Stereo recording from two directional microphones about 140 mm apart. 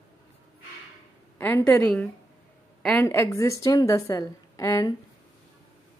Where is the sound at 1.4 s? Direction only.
15° left (ahead or behind).